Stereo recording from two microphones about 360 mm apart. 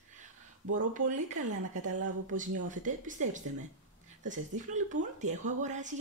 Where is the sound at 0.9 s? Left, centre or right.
Right.